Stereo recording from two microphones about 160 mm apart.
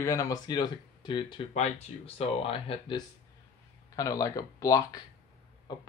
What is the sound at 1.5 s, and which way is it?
Speech, 45° left (ahead or behind).